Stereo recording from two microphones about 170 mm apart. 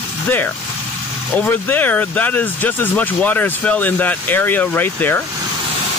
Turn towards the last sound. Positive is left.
turn(degrees=10)  # may be behind; listen again after turning